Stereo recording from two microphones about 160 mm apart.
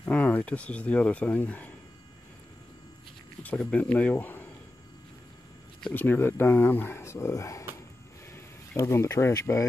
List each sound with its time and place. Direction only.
0.0 s speech: 10° left (ahead or behind)
3.4 s speech: 10° left (ahead or behind)
5.8 s speech: 10° left (ahead or behind)